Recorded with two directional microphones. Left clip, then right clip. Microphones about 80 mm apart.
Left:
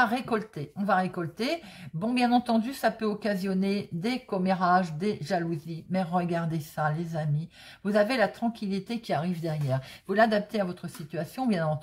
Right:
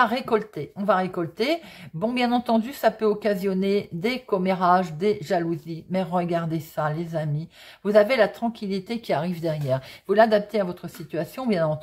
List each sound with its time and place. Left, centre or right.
0.0 s speech: right
11.1 s speech: right